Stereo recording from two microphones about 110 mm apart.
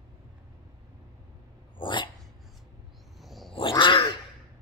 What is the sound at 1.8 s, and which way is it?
Dog, 45° left (ahead or behind).